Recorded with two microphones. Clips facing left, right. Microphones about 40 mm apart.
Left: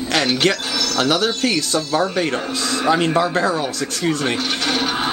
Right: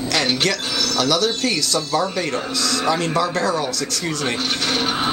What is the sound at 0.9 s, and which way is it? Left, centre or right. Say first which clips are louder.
Speech: left 1 dB; left.